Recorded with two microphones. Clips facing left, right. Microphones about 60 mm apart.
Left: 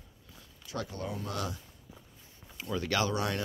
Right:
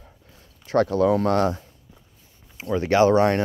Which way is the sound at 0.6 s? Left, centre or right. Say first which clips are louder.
Right 18 dB; right.